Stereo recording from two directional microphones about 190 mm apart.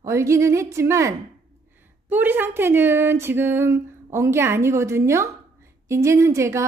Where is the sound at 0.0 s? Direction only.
15° right (ahead or behind).